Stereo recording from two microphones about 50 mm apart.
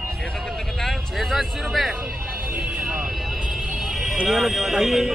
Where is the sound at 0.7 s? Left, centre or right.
Centre.